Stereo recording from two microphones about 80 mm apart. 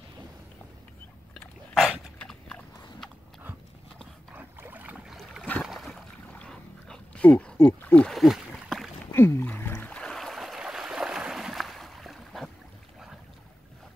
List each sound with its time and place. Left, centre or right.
1.8 s dog: centre
2.1 s clip-clop: centre
4.3 s boat: right
5.0 s boat: centre
6.2 s dog: centre
7.2 s speech: centre
8.1 s speech: centre
8.5 s a sound: centre
9.0 s boat: left
9.8 s a sound: centre
10.1 s boat: centre